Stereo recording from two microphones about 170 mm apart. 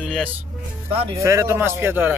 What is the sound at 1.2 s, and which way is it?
Speech, 15° right (ahead or behind).